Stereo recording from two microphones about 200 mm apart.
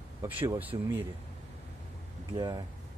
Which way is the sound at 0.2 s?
20° right (ahead or behind).